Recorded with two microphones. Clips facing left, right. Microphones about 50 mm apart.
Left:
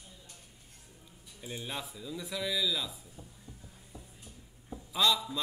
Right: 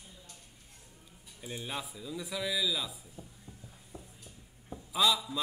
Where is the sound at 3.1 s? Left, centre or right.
Centre.